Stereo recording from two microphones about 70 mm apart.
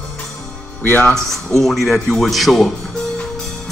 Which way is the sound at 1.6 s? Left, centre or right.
Centre.